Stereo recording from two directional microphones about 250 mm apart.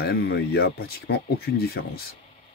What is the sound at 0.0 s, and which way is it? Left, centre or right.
Speech, left.